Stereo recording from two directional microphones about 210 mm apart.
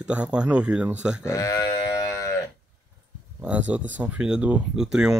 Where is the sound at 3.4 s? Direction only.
5° right (ahead or behind).